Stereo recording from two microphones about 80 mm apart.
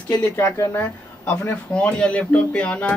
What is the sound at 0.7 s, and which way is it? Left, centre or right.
Speech, centre.